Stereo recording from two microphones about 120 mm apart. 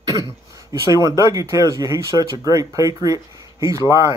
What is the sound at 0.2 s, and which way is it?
Speech, 30° right (ahead or behind).